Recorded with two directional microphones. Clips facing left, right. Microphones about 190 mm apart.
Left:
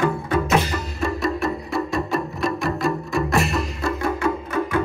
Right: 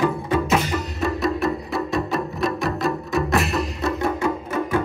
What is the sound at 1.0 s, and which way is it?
Music, centre (ahead or behind).